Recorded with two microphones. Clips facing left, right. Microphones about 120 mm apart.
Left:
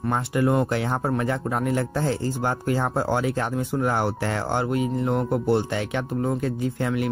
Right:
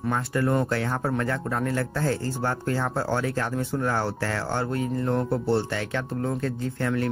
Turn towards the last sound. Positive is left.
turn(degrees=10)  # may be behind; listen again after turning